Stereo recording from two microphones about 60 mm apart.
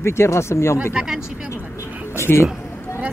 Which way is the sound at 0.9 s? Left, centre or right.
Centre.